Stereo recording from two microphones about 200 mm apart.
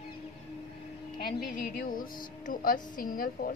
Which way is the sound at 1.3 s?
45° left (ahead or behind).